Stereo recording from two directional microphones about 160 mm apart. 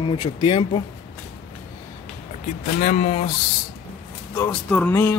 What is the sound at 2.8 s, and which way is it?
Speech, 50° left (ahead or behind).